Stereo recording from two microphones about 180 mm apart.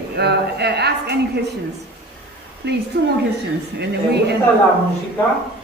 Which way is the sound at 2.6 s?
70° right (ahead or behind).